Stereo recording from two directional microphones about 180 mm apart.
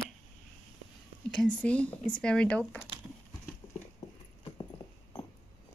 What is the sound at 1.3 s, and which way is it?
A woman's voice, 5° left (ahead or behind).